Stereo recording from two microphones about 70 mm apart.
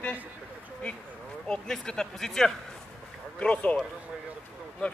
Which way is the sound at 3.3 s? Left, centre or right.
Centre.